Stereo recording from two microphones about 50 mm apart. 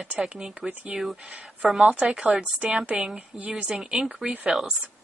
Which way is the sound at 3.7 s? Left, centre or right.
Centre.